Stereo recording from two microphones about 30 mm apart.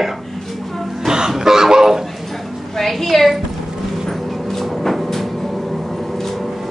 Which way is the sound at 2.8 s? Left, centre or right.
Centre.